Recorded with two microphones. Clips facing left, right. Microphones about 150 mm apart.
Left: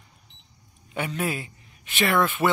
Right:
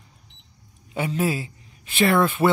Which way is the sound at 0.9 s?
30° right (ahead or behind).